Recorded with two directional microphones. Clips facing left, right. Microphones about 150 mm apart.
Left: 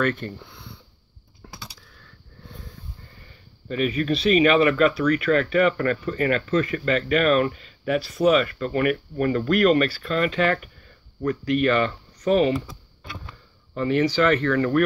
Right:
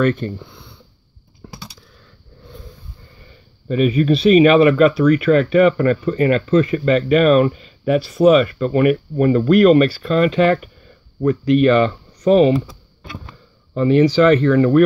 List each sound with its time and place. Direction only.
0.0 s speech: 20° right (ahead or behind)
3.6 s speech: 20° right (ahead or behind)